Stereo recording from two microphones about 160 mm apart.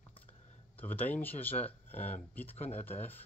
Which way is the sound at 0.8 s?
10° left (ahead or behind).